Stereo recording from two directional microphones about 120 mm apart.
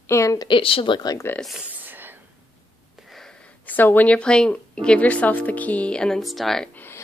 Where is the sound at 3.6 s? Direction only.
15° left (ahead or behind).